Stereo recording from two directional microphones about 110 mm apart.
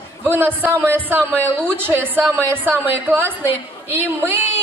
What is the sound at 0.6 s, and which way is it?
Speech, 20° right (ahead or behind).